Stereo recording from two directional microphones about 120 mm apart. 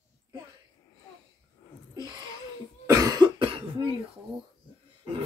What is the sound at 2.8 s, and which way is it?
Cough, 30° right (ahead or behind).